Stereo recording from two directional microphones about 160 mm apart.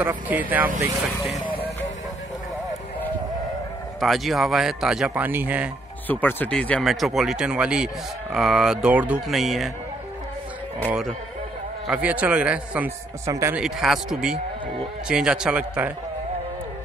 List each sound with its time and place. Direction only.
0.3 s a man's voice: 10° right (ahead or behind)
4.0 s speech: centre (ahead or behind)
6.0 s speech: 10° left (ahead or behind)
10.9 s a man's voice: centre (ahead or behind)
13.2 s a man's voice: 20° right (ahead or behind)
13.6 s speech: 5° right (ahead or behind)